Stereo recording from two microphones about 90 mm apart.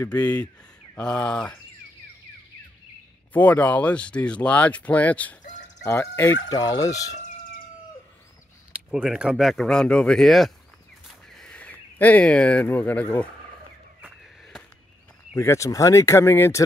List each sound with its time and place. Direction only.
0.0 s speech: 20° left (ahead or behind)
3.3 s speech: 20° left (ahead or behind)
6.5 s speech: 45° left (ahead or behind)
8.9 s speech: 5° right (ahead or behind)
11.1 s a sound: 5° left (ahead or behind)
12.6 s speech: 20° left (ahead or behind)
15.3 s speech: 30° left (ahead or behind)